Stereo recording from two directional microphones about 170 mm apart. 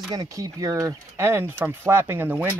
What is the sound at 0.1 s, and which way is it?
Speech, 20° right (ahead or behind).